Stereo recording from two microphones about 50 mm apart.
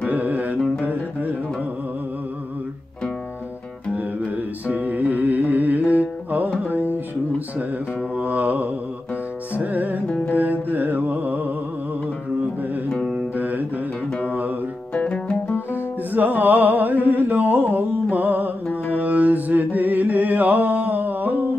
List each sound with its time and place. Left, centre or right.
0.1 s music: right
3.9 s music: right
8.2 s mantra: right
9.5 s music: right
10.3 s mantra: right
13.4 s music: right
15.0 s music: left
15.7 s music: right